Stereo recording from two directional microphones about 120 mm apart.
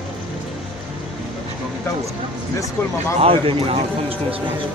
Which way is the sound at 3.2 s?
50° right (ahead or behind).